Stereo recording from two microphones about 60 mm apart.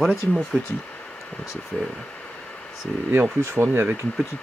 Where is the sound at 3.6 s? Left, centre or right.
Right.